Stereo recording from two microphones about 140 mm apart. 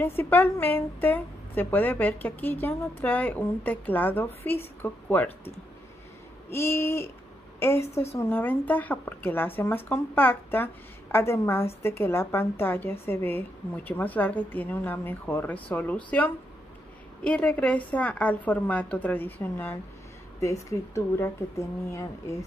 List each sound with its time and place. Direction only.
0.0 s a woman's voice: 15° left (ahead or behind)
6.5 s a woman's voice: 15° left (ahead or behind)